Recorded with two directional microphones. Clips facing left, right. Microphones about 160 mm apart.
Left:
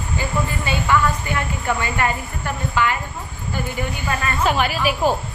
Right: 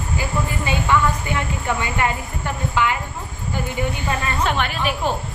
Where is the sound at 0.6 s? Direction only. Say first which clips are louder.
Even; 15° right (ahead or behind).